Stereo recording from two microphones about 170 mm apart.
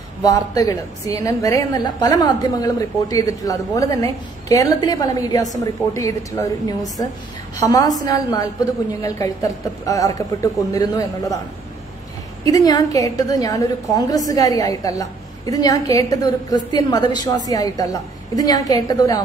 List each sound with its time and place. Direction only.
0.2 s a woman's voice: 20° left (ahead or behind)
12.4 s a woman's voice: 20° left (ahead or behind)